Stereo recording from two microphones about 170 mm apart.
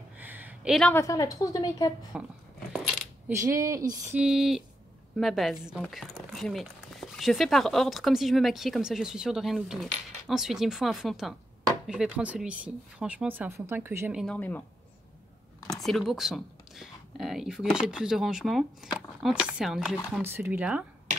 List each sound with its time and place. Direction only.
0.2 s a sound: 10° right (ahead or behind)
0.7 s speech: 5° left (ahead or behind)
1.0 s speech: 20° left (ahead or behind)
2.1 s speech: 5° right (ahead or behind)
3.3 s speech: 15° right (ahead or behind)
4.2 s speech: 5° right (ahead or behind)
14.2 s speech: 10° left (ahead or behind)
15.7 s speech: centre (ahead or behind)